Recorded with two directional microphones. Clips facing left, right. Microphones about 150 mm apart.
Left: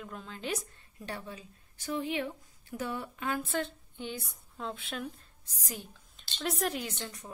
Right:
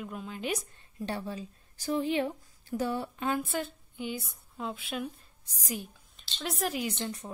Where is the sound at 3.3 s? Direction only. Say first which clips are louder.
Right 1 dB; 10° right (ahead or behind).